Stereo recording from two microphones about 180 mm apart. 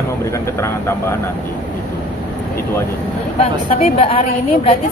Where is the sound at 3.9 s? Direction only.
35° left (ahead or behind).